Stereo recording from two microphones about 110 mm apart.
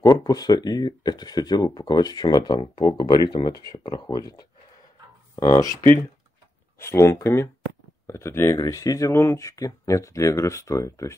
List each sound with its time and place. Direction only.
0.0 s speech: 35° left (ahead or behind)
6.8 s speech: 25° left (ahead or behind)